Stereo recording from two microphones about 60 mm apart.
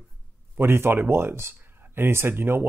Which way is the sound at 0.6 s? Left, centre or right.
Right.